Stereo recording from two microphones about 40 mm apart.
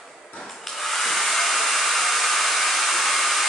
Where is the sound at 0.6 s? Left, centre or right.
Centre.